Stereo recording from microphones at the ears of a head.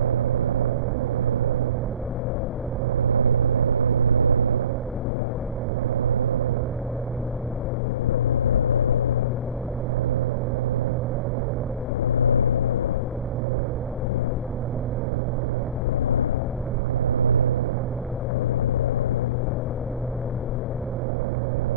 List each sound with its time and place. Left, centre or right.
0.0 s vehicle: right
3.0 s vehicle: right
5.9 s vehicle: right
8.1 s vehicle: left
12.0 s vehicle: left
17.0 s vehicle: right